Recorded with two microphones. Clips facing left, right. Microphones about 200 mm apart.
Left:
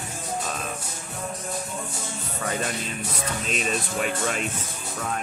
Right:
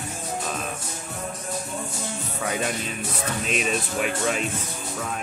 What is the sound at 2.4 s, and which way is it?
Speech, 5° right (ahead or behind).